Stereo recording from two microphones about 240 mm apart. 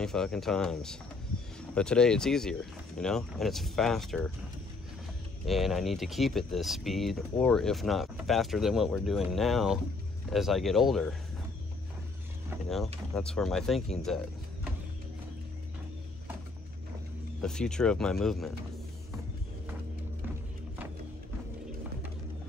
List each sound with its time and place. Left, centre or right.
0.0 s speech: centre
5.4 s speech: centre
12.6 s speech: centre
17.4 s speech: centre